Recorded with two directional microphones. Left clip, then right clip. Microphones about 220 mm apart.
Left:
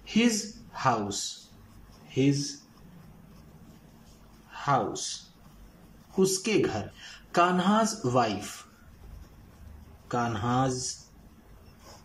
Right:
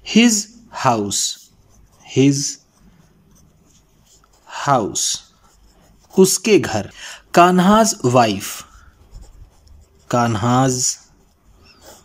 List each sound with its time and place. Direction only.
0.0 s speech: 45° right (ahead or behind)
2.0 s a sound: 50° right (ahead or behind)
4.5 s a woman's voice: 50° right (ahead or behind)
10.0 s a woman's voice: 50° right (ahead or behind)